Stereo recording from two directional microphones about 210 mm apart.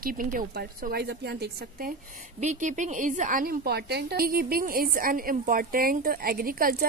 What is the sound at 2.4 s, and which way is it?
A woman's voice, 35° right (ahead or behind).